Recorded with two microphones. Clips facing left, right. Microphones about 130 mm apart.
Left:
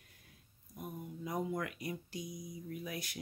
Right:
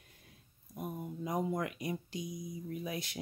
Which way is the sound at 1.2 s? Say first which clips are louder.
Right 3 dB; 25° right (ahead or behind).